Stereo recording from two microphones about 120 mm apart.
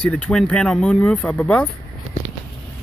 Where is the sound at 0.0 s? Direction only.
5° left (ahead or behind).